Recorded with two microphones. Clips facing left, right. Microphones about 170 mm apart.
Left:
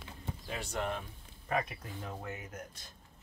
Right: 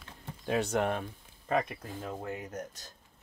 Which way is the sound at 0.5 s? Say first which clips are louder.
Right 8 dB; 70° right (ahead or behind).